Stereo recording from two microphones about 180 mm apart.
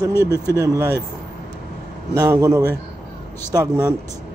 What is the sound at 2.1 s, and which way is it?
A man's voice, 20° right (ahead or behind).